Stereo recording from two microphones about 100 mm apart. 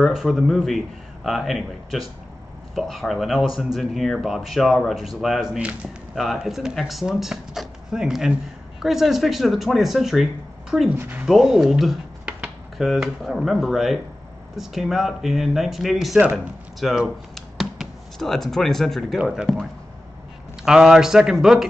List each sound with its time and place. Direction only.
0.0 s speech: 5° right (ahead or behind)
11.0 s speech: 15° right (ahead or behind)
11.2 s speech: 5° right (ahead or behind)
20.6 s speech: 5° right (ahead or behind)